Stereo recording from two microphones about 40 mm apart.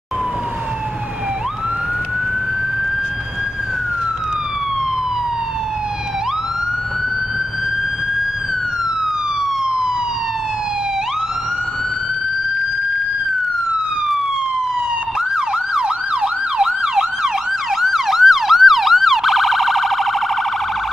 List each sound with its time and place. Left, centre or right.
15.3 s emergency vehicle: centre